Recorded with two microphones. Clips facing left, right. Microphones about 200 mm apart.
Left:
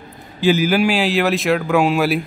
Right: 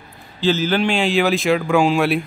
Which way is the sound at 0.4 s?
10° left (ahead or behind).